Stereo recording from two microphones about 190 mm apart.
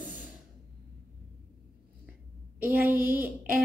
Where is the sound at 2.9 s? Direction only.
10° right (ahead or behind).